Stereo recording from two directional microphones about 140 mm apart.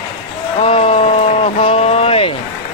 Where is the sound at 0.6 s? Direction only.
40° left (ahead or behind).